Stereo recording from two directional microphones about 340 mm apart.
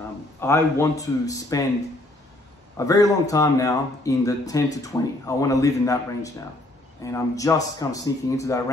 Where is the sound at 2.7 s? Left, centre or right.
Centre.